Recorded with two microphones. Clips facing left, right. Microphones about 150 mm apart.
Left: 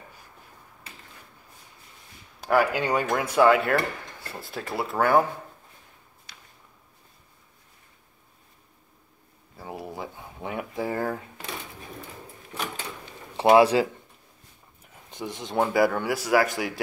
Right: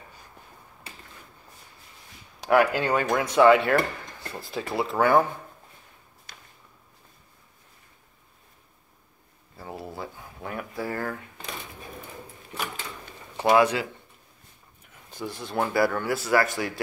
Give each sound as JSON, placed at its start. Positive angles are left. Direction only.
{"t": 2.4, "sound": "speech", "side_deg": 5}
{"t": 6.3, "sound": "walk", "side_deg": -45}
{"t": 9.6, "sound": "a sound", "side_deg": 15}
{"t": 13.4, "sound": "speech", "side_deg": 30}
{"t": 15.0, "sound": "speech", "side_deg": 20}